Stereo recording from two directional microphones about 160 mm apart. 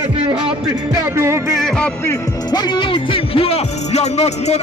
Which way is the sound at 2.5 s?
30° left (ahead or behind).